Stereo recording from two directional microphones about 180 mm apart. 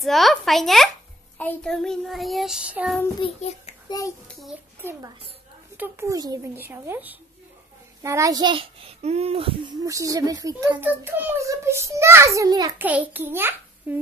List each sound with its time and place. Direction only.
0.0 s child singing: centre (ahead or behind)
3.2 s a child's voice: 35° left (ahead or behind)
5.8 s a child's voice: 15° right (ahead or behind); by 9.8 s 30° right (ahead or behind)
9.8 s a child's voice: 20° right (ahead or behind)
12.8 s a child's voice: 10° right (ahead or behind)